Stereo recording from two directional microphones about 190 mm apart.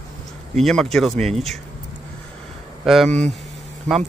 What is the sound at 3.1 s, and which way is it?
Speech, 35° right (ahead or behind).